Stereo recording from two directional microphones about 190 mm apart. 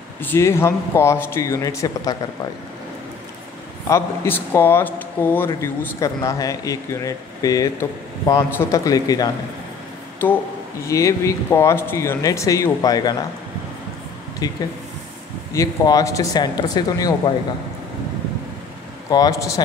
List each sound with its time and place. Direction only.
0.2 s speech: 10° left (ahead or behind)
3.8 s speech: 15° left (ahead or behind)
14.4 s speech: 20° left (ahead or behind)
19.0 s speech: 20° left (ahead or behind)